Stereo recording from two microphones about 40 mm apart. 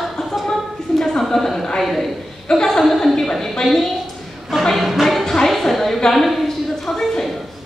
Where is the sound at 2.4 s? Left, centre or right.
Centre.